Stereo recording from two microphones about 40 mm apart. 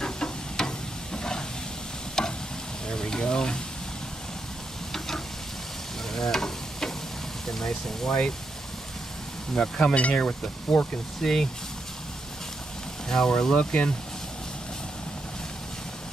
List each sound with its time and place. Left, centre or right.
0.0 s a sound: centre
2.2 s stir: centre
2.9 s a sound: centre
4.9 s sizzle: centre
6.1 s stir: centre
7.5 s speech: centre
9.6 s speech: left
9.9 s speech: left
11.1 s speech: centre
13.1 s speech: centre